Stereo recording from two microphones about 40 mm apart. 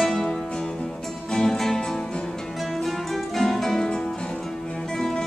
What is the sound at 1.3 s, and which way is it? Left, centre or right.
Music, centre.